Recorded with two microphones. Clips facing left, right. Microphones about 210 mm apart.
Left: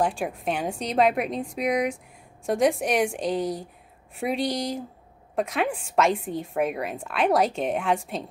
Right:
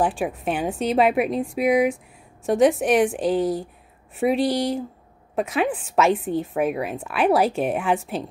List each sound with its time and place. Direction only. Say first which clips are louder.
0.0 s a woman's voice: right 3 dB; 5° right (ahead or behind)